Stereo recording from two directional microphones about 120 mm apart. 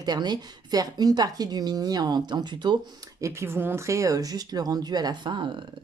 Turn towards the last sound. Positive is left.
turn(degrees=-40)  # may be behind; listen again after turning